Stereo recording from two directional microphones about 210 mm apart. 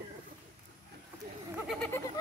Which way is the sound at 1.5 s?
Centre (ahead or behind).